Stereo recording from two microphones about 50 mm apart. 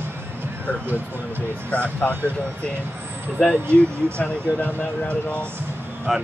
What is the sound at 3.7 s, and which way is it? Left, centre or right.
Speech, left.